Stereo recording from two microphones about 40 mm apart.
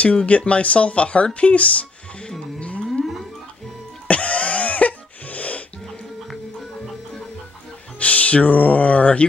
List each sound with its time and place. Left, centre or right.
0.0 s speech: left
4.1 s cough: left
8.0 s speech: left